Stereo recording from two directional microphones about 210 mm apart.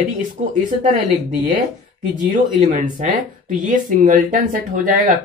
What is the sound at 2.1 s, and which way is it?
Speech, 35° right (ahead or behind).